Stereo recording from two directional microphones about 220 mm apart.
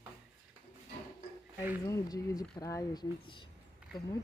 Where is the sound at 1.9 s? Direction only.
15° left (ahead or behind).